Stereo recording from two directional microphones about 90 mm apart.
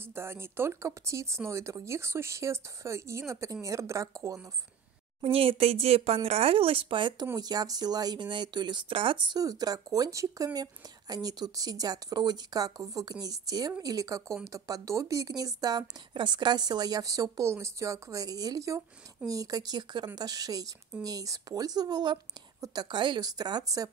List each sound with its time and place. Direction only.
0.0 s speech: 25° right (ahead or behind)
5.2 s speech: 90° right; by 7.2 s 65° right (ahead or behind)
7.3 s speech: 50° right (ahead or behind)
9.4 s a woman's voice: 45° right (ahead or behind)
22.8 s speech: 60° right (ahead or behind)